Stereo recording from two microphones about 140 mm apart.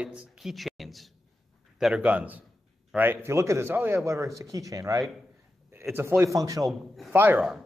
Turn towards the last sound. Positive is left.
turn(degrees=-15)  # may be behind; listen again after turning